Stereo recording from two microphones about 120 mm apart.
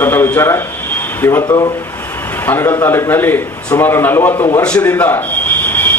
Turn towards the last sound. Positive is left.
turn(degrees=15)  # may be behind; listen again after turning